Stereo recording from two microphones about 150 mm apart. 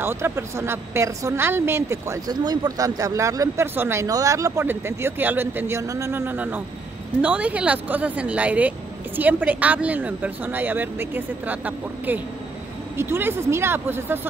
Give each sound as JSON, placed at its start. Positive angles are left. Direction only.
{"t": 0.0, "sound": "a woman's voice", "side_deg": -15}